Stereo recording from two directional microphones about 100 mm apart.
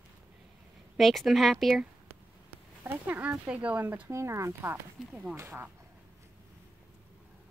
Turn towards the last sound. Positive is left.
turn(degrees=-25)  # may be behind; listen again after turning